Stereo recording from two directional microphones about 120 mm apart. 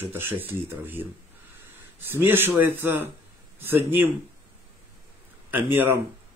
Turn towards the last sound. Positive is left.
turn(degrees=-15)  # may be behind; listen again after turning